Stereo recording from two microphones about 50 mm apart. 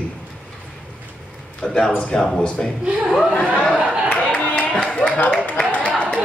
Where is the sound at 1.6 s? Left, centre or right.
Centre.